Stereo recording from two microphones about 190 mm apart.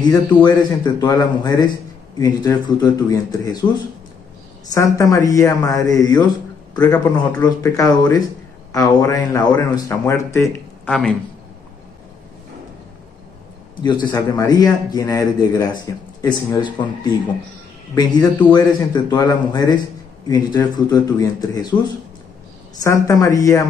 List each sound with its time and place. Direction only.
0.1 s a man's voice: 20° left (ahead or behind)
4.6 s a woman's voice: 15° left (ahead or behind)
13.8 s a man's voice: 20° left (ahead or behind)
22.8 s a woman's voice: 15° left (ahead or behind)